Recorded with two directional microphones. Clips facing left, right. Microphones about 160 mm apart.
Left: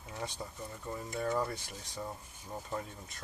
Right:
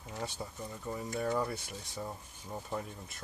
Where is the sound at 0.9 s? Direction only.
5° right (ahead or behind).